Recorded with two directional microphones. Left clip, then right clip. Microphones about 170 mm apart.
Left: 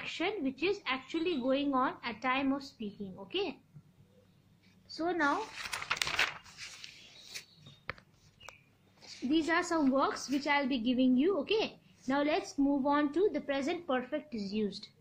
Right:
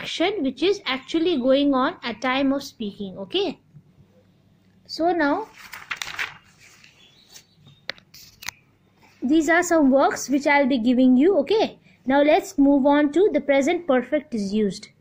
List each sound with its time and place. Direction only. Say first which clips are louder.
0.0 s a woman's voice: right 12 dB; 45° right (ahead or behind)
4.9 s a woman's voice: right 10 dB; 45° right (ahead or behind)
9.3 s a woman's voice: right 12 dB; 45° right (ahead or behind)